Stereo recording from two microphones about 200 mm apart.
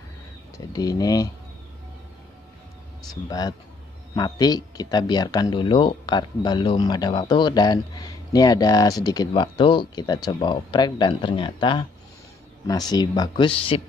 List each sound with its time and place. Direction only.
0.7 s speech: 20° left (ahead or behind)
3.3 s speech: 20° left (ahead or behind)